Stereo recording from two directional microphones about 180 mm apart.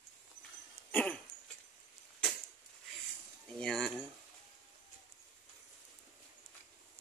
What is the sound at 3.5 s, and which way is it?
Speech, 5° left (ahead or behind).